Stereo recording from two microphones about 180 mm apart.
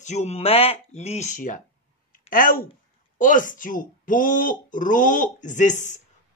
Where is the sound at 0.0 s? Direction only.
40° left (ahead or behind).